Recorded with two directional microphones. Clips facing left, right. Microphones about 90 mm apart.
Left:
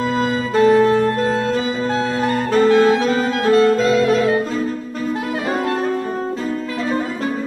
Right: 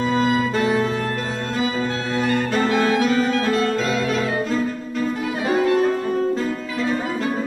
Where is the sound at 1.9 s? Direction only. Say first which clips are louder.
Left 3 dB; 35° left (ahead or behind).